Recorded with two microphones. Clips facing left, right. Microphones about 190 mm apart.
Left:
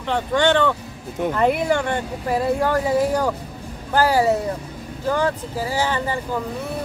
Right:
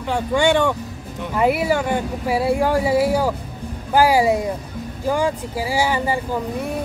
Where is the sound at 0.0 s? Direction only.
10° right (ahead or behind).